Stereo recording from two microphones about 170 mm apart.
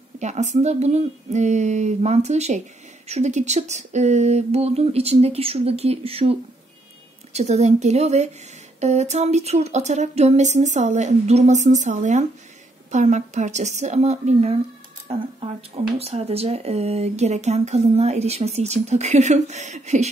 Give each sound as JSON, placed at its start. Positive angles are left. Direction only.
{"t": 0.2, "sound": "speech", "side_deg": -45}
{"t": 7.3, "sound": "speech", "side_deg": -40}